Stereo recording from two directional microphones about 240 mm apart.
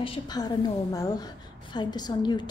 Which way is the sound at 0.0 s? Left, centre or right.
Centre.